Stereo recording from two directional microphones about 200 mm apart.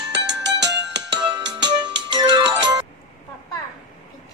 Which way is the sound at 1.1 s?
25° right (ahead or behind).